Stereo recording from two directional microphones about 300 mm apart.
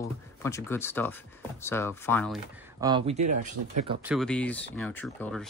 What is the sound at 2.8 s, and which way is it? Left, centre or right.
Speech, centre.